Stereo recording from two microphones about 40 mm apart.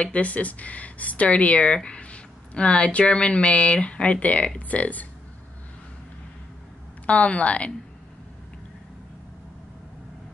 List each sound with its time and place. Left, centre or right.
0.0 s speech: left
7.1 s speech: left